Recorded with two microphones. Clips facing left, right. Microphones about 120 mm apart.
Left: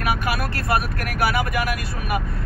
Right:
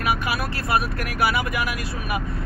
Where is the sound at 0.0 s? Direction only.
50° left (ahead or behind).